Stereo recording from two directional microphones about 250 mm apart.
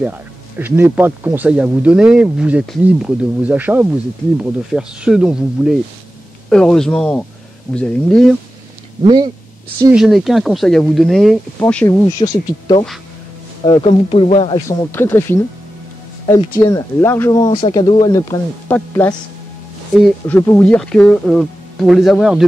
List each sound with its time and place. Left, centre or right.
0.0 s speech: centre
9.0 s speech: centre
9.8 s speech: centre
12.2 s speech: centre
16.5 s speech: centre